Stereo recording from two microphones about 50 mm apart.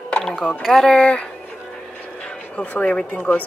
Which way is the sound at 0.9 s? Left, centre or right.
Left.